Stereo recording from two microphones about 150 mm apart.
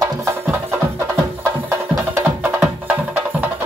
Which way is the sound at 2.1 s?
15° right (ahead or behind).